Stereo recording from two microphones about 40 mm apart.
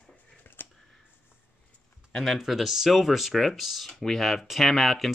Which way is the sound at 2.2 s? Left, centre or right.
Centre.